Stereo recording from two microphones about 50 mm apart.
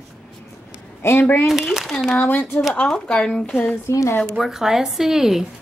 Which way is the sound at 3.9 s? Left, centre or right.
Left.